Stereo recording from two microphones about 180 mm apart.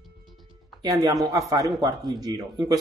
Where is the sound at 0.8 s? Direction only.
20° right (ahead or behind).